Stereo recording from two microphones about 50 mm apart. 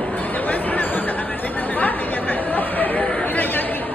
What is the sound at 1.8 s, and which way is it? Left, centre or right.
Chatter, left.